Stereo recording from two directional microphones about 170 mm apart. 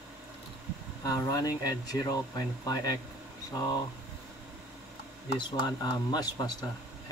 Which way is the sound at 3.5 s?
20° left (ahead or behind).